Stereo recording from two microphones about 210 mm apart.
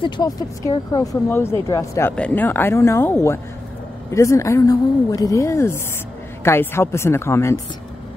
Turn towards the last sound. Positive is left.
turn(degrees=15)  # may be behind; listen again after turning